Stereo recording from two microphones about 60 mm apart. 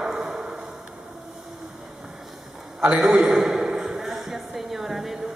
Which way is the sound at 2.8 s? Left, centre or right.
Right.